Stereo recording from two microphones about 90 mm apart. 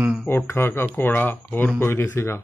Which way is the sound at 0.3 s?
25° left (ahead or behind).